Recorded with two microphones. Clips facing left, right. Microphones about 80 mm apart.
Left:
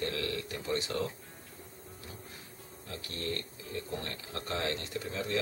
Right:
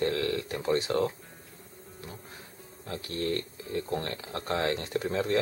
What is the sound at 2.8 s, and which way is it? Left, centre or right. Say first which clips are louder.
Speech: right 7 dB; right.